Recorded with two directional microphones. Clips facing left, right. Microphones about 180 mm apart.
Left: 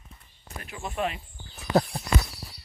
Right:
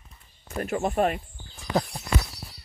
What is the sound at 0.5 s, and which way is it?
Speech, 45° right (ahead or behind).